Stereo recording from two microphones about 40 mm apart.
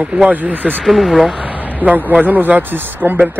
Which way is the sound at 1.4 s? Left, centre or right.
Right.